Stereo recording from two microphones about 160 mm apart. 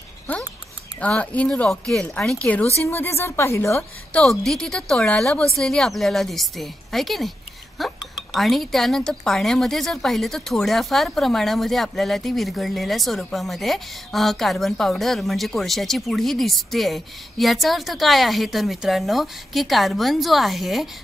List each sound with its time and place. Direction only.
1.0 s a woman's voice: 10° left (ahead or behind)
4.2 s speech: centre (ahead or behind)